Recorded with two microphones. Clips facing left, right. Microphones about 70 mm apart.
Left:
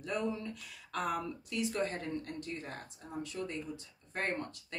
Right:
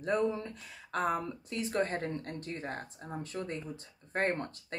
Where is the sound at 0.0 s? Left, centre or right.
Right.